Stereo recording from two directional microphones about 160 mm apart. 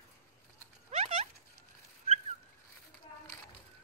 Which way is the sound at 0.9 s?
45° right (ahead or behind).